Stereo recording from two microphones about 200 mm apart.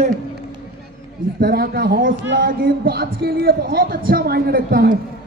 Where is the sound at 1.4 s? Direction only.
50° right (ahead or behind).